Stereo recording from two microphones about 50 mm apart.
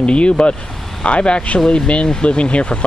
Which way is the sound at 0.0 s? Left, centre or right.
Centre.